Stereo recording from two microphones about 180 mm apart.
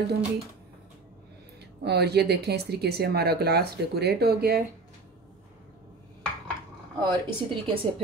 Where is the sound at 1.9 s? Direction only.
65° right (ahead or behind).